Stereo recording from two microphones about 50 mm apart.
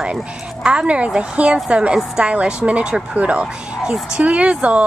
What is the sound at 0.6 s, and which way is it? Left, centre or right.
Speech, right.